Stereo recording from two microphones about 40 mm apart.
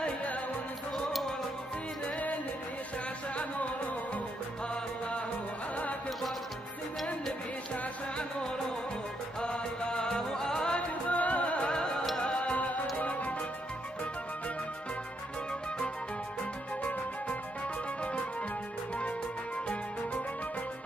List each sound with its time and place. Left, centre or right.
0.0 s music: left
9.4 s music: left
10.7 s music: left
11.7 s music: centre
12.4 s music: left